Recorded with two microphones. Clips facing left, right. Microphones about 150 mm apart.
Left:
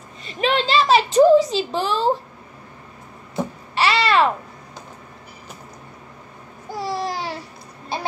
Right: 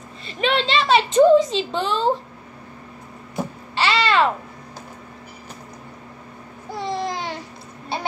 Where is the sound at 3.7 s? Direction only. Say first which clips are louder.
Left 1 dB; 30° right (ahead or behind).